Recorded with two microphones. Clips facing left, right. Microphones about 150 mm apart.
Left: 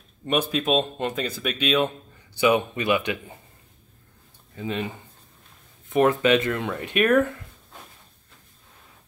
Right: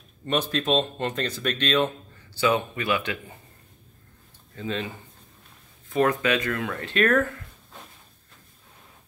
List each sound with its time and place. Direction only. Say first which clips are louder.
0.2 s speech: left 2 dB; 10° left (ahead or behind)
4.6 s speech: left 1 dB; 15° left (ahead or behind)
5.9 s speech: left 4 dB; 20° left (ahead or behind)